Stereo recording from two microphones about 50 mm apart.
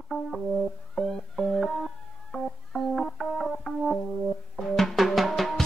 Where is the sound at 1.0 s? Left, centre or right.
Centre.